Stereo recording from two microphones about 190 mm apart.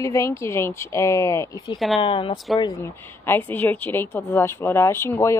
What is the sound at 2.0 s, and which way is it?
A woman's voice, 25° left (ahead or behind).